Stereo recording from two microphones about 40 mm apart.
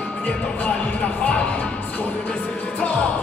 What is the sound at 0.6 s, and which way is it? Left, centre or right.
Speech, left.